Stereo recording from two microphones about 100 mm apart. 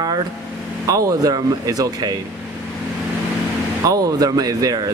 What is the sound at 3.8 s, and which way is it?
Speech, 40° right (ahead or behind).